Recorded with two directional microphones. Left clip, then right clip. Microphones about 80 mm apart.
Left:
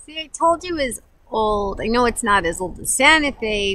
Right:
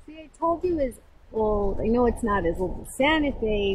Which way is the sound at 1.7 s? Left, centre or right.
Centre.